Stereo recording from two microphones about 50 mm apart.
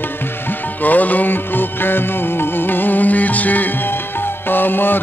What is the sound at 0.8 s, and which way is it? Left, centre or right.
Music, left.